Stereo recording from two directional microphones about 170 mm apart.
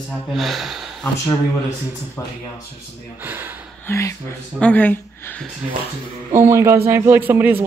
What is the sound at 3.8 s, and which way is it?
Speech, 15° left (ahead or behind).